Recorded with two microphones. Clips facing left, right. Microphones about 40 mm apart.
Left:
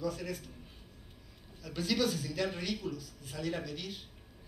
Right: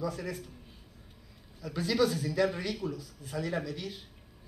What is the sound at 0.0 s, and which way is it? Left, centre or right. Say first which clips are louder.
Speech: right 2 dB; right.